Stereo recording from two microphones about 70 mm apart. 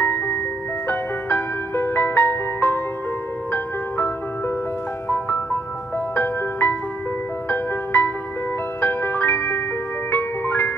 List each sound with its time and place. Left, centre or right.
0.0 s music: left
6.1 s music: left